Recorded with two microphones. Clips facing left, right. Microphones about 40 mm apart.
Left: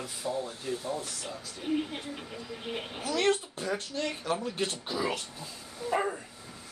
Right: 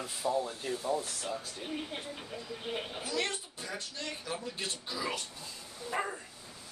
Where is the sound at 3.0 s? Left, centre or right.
Left.